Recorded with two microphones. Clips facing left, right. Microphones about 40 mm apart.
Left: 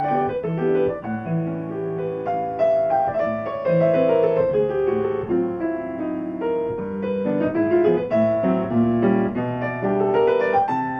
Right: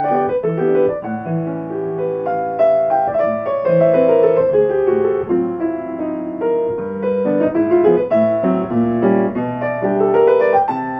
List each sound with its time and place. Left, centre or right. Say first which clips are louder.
0.0 s piano: right 5 dB; centre
2.6 s music: right 5 dB; centre
4.6 s piano: right 6 dB; centre
7.1 s music: right 7 dB; centre